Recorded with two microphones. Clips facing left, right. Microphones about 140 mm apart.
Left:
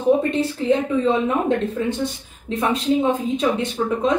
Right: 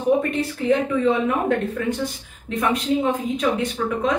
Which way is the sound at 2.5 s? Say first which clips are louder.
Left 2 dB; 25° left (ahead or behind).